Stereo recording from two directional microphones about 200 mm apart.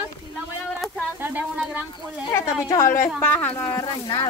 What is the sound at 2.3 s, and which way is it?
A woman's voice, 15° left (ahead or behind).